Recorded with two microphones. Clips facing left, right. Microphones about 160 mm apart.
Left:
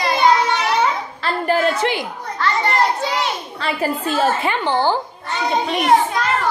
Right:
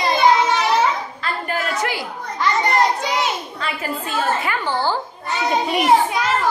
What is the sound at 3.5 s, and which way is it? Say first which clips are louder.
A woman's voice: left 4 dB; 35° left (ahead or behind).